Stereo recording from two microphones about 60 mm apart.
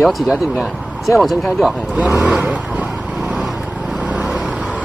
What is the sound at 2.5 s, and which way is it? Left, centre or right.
Vehicle, right.